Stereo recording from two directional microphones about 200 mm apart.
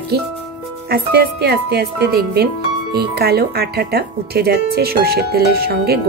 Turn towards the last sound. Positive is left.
turn(degrees=-50)  # may be behind; listen again after turning